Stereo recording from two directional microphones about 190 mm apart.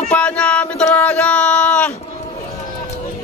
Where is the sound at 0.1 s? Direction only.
5° left (ahead or behind).